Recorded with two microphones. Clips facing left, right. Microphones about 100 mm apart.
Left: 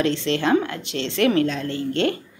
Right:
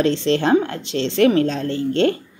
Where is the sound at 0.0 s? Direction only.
30° right (ahead or behind).